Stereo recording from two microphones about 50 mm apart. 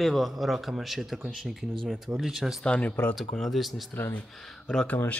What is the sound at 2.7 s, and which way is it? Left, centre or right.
Speech, left.